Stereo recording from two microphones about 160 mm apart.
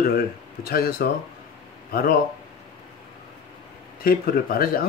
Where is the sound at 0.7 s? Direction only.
75° left (ahead or behind).